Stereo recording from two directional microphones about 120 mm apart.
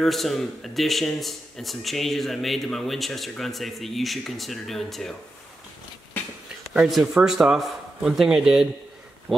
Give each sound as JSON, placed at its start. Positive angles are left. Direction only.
{"t": 0.0, "sound": "speech", "side_deg": 0}
{"t": 6.7, "sound": "speech", "side_deg": -5}